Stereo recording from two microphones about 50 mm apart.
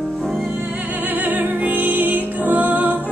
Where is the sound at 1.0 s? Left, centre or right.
Right.